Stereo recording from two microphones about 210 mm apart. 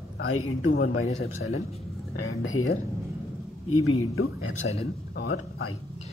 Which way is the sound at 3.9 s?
80° left.